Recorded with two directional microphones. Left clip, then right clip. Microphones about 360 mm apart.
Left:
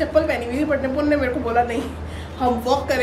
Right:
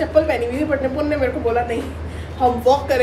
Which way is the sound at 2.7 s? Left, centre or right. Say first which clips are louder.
Right 6 dB; centre.